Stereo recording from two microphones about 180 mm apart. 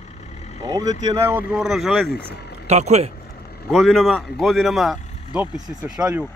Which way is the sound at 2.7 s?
40° right (ahead or behind).